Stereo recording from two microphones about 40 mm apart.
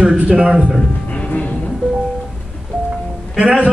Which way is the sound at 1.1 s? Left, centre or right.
Left.